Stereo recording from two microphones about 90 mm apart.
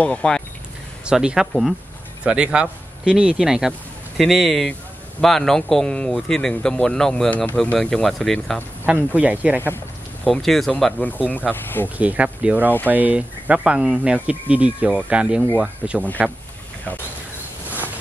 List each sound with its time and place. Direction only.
0.0 s speech: 10° left (ahead or behind)
1.0 s speech: 10° right (ahead or behind)
2.2 s speech: 10° right (ahead or behind); by 7.2 s 5° left (ahead or behind)
7.2 s speech: 15° left (ahead or behind)
9.1 s speech: 15° right (ahead or behind)
10.2 s speech: 5° left (ahead or behind)
11.0 s speech: 20° left (ahead or behind)
12.0 s speech: 15° right (ahead or behind)